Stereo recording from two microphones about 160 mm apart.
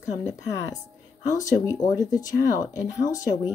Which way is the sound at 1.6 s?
20° left (ahead or behind).